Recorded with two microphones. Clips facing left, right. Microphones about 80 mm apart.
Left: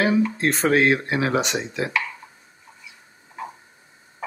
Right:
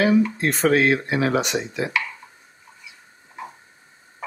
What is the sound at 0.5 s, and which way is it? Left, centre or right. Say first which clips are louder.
Speech: left 1 dB; left.